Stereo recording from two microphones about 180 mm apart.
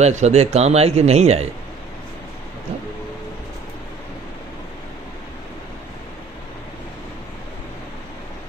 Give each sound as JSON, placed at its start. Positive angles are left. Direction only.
{"t": 0.0, "sound": "speech", "side_deg": -40}